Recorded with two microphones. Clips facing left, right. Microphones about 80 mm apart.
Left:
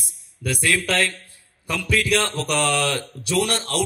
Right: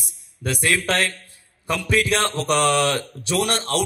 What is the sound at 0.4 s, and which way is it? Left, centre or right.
A man's voice, right.